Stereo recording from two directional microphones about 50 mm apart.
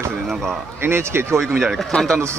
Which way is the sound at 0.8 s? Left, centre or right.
Right.